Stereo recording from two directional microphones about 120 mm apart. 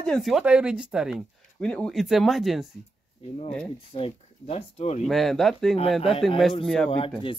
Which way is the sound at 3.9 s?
55° left (ahead or behind).